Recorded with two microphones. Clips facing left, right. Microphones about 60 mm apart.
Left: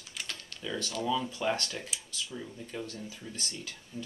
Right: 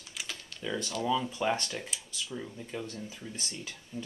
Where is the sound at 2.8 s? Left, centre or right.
Right.